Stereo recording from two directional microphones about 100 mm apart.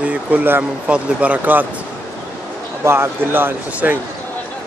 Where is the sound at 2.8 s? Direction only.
25° right (ahead or behind).